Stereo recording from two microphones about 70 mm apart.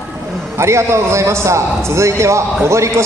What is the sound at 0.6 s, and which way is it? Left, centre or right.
A man's voice, right.